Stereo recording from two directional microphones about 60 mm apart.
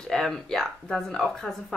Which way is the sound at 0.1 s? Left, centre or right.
Centre.